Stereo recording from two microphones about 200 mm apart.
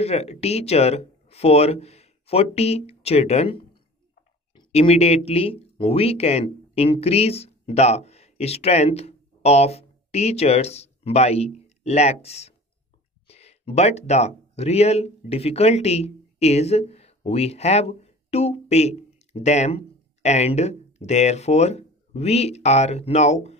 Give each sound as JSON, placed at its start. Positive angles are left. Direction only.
{"t": 0.0, "sound": "speech", "side_deg": 30}